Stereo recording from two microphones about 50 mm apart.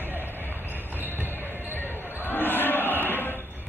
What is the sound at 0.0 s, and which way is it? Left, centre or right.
Vehicle, right.